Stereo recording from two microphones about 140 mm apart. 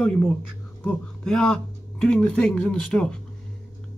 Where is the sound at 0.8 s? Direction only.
5° left (ahead or behind).